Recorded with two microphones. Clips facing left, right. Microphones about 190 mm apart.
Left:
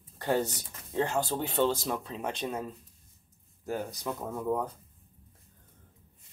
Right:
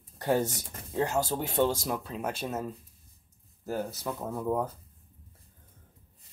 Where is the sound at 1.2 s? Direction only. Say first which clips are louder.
Right 1 dB; 45° right (ahead or behind).